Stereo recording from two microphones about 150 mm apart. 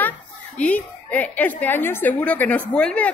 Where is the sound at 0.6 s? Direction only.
10° left (ahead or behind).